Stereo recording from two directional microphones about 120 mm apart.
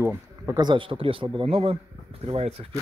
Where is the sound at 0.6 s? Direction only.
40° right (ahead or behind); by 2.5 s 55° right (ahead or behind).